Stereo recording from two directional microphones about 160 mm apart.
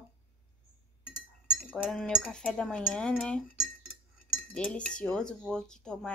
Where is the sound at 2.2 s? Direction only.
5° left (ahead or behind).